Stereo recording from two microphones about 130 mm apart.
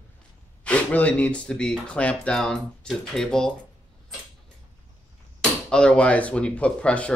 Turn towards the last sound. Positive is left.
turn(degrees=10)  # may be behind; listen again after turning